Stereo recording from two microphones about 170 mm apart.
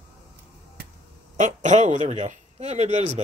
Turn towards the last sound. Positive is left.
turn(degrees=-40)  # may be behind; listen again after turning